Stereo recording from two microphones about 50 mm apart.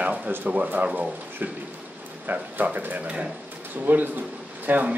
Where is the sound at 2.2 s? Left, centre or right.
Right.